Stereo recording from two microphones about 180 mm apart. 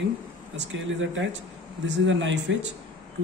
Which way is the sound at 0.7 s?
90° right.